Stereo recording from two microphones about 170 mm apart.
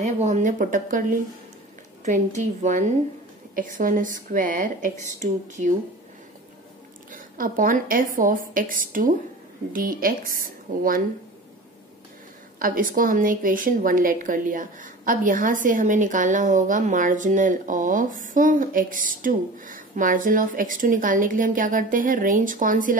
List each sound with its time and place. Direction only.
0.0 s a woman's voice: 45° right (ahead or behind)
7.1 s a woman's voice: 55° right (ahead or behind)
12.5 s a woman's voice: 55° right (ahead or behind)